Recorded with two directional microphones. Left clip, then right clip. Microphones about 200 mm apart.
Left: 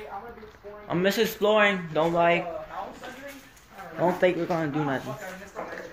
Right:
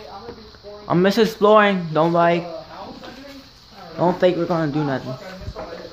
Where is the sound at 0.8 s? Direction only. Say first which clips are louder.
Right 7 dB; 30° right (ahead or behind).